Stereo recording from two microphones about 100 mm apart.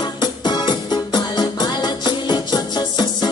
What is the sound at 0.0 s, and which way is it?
Music, 45° left (ahead or behind).